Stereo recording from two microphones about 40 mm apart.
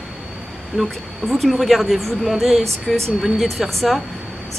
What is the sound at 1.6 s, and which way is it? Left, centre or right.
A woman's voice, centre.